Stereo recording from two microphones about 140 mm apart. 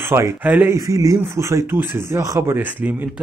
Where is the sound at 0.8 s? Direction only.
25° right (ahead or behind).